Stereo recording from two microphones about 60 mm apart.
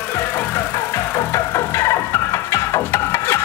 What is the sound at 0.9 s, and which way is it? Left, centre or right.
Music, left.